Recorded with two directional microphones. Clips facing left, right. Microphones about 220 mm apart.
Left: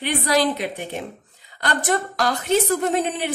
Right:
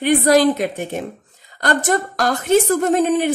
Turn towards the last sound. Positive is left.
turn(degrees=-45)  # may be behind; listen again after turning